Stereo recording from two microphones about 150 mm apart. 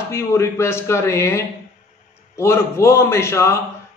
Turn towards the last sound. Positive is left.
turn(degrees=20)  # may be behind; listen again after turning